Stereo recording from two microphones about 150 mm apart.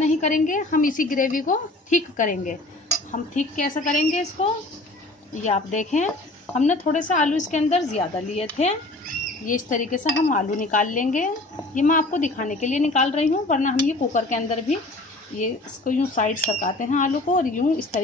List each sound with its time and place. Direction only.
0.0 s dishes: 55° left (ahead or behind)
5.4 s speech: 55° left (ahead or behind)
6.5 s dishes: 55° left (ahead or behind)
9.5 s dishes: 60° left (ahead or behind)